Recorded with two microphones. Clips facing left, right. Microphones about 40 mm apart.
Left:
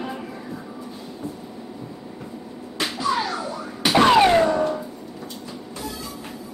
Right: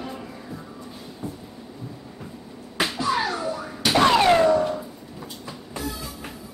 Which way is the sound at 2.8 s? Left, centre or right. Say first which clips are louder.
Left 1 dB; centre.